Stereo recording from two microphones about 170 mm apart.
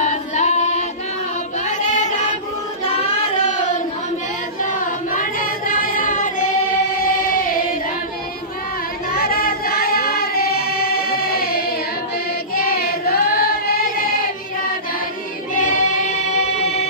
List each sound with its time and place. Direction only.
0.0 s female singing: 45° left (ahead or behind)
1.7 s child singing: 45° left (ahead or behind)
5.1 s child singing: 55° left (ahead or behind)
7.0 s a sound: 55° left (ahead or behind)
9.1 s child singing: 60° left (ahead or behind)
15.5 s choir: 50° left (ahead or behind)